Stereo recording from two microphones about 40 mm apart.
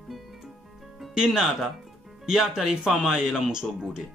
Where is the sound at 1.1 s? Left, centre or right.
Centre.